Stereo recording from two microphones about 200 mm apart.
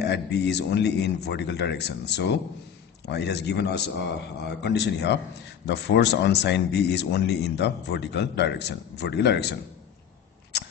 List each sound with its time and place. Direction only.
0.0 s speech: 55° left (ahead or behind)